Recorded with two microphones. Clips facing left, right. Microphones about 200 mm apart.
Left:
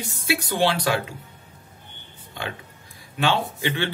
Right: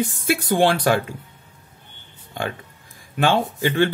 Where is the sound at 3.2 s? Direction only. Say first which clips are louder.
Right 4 dB; 50° right (ahead or behind).